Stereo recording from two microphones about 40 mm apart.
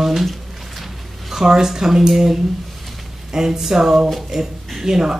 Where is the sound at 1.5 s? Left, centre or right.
Centre.